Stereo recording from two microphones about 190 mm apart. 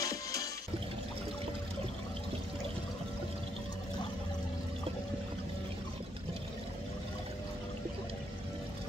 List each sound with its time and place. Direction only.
0.0 s music: 20° left (ahead or behind)